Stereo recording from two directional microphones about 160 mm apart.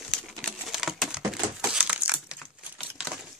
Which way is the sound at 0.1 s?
Centre (ahead or behind).